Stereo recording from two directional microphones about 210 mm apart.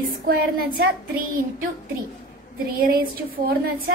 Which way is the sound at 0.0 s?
45° right (ahead or behind).